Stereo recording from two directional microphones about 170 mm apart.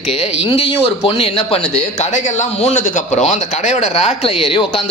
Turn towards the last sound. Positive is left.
turn(degrees=30)  # may be behind; listen again after turning